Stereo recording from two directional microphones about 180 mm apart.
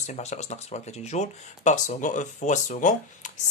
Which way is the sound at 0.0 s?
40° left (ahead or behind).